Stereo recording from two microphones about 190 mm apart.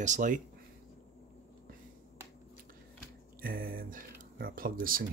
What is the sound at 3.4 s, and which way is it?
Speech, 50° right (ahead or behind).